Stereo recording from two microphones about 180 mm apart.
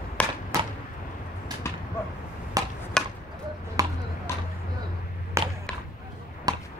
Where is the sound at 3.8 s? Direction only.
20° right (ahead or behind).